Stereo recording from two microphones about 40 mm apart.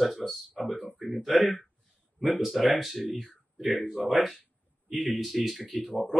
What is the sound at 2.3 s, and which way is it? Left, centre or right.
Speech, centre.